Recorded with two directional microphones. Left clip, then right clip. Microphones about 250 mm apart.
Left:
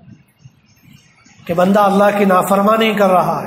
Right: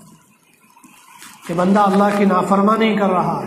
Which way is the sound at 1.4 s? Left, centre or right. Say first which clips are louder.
Left 3 dB; left.